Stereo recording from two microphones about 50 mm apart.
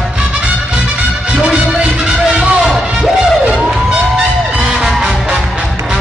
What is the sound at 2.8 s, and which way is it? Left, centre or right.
Music, centre.